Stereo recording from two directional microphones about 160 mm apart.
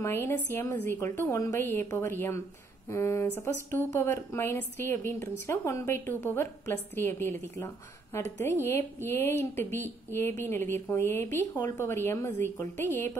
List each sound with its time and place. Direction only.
0.0 s a woman's voice: 15° left (ahead or behind)